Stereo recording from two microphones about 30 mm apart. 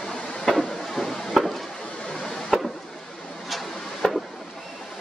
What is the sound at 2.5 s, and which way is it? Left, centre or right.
Chop, centre.